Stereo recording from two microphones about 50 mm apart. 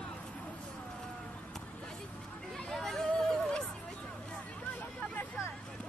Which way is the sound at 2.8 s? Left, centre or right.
Centre.